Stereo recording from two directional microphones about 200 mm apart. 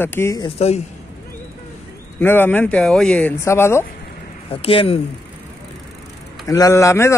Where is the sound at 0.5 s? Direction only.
30° left (ahead or behind).